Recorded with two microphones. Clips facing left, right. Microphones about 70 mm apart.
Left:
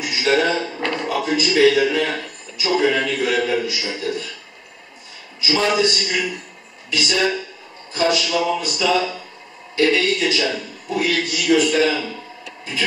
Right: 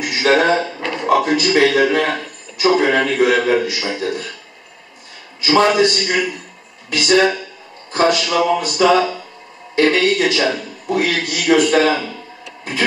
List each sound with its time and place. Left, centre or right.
0.0 s a man's voice: right
5.4 s a man's voice: right